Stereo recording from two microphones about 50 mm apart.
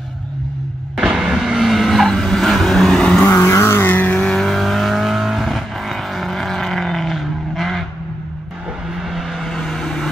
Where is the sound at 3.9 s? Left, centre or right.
Left.